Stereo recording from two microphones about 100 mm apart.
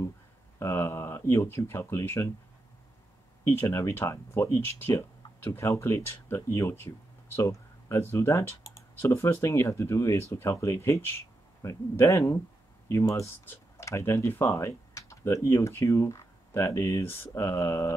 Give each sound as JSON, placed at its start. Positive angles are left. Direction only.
{"t": 0.6, "sound": "speech", "side_deg": 25}
{"t": 3.4, "sound": "speech", "side_deg": 25}